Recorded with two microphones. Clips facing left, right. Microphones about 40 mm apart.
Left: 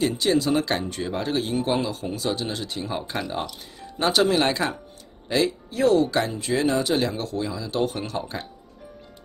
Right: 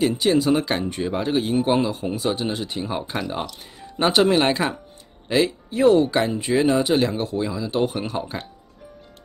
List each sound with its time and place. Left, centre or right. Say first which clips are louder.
0.0 s speech: right 3 dB; centre
4.0 s speech: right 3 dB; right